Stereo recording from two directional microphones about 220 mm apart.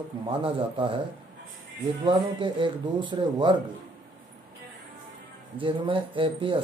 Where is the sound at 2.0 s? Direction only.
20° right (ahead or behind).